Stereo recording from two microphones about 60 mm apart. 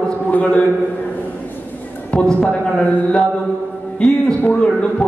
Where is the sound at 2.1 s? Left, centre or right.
Centre.